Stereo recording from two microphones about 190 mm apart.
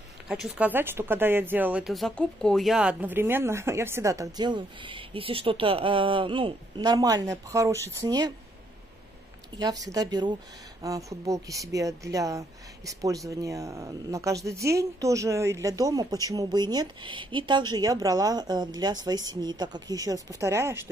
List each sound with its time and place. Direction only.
0.3 s speech: 5° right (ahead or behind); by 8.3 s 20° right (ahead or behind)
9.6 s speech: 20° right (ahead or behind)